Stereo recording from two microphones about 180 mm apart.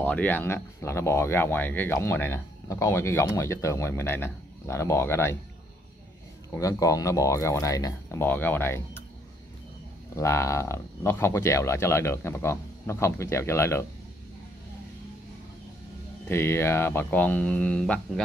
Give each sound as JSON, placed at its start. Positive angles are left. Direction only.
{"t": 0.0, "sound": "speech", "side_deg": 10}
{"t": 6.6, "sound": "speech", "side_deg": 20}
{"t": 10.1, "sound": "speech", "side_deg": 15}
{"t": 16.3, "sound": "speech", "side_deg": 15}